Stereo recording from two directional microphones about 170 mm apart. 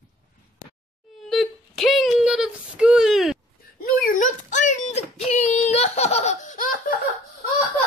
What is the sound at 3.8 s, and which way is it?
Child singing, 55° left (ahead or behind).